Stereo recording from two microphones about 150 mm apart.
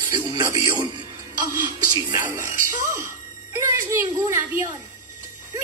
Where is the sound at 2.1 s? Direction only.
15° right (ahead or behind).